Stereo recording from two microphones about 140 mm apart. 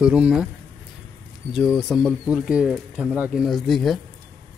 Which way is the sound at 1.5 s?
Centre (ahead or behind).